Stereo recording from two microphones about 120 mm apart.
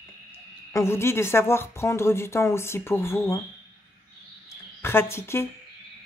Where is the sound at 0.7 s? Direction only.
20° left (ahead or behind).